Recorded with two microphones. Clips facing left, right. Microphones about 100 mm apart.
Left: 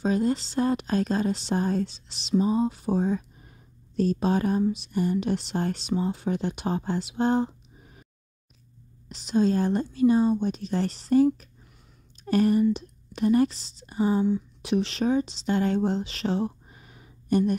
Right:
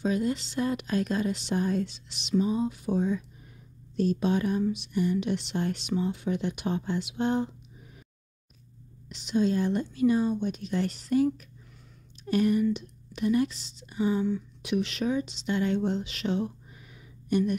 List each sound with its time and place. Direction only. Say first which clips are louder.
0.0 s speech: left 3 dB; 35° left (ahead or behind)
9.1 s speech: left 3 dB; 35° left (ahead or behind)